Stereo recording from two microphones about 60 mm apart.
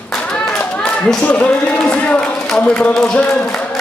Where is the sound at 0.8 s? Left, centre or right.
Left.